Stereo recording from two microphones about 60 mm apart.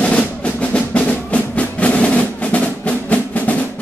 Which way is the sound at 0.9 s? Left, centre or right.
Left.